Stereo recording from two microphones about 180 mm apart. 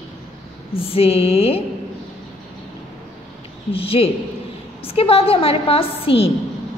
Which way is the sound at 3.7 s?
30° left (ahead or behind).